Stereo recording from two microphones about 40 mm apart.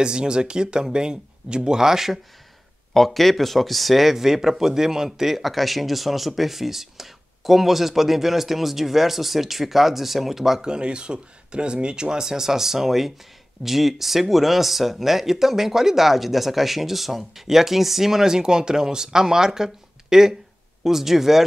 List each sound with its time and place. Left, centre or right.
0.0 s speech: right
2.9 s speech: centre
10.7 s speech: right; by 21.5 s centre